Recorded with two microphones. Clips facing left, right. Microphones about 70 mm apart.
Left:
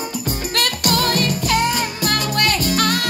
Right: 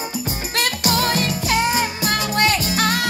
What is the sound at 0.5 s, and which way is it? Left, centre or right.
Music, left.